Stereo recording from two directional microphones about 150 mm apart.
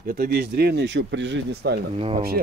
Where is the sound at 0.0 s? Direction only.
90° right.